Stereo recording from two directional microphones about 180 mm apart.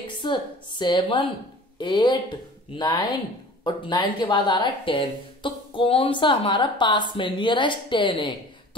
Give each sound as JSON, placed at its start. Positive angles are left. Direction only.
{"t": 0.0, "sound": "a woman's voice", "side_deg": 25}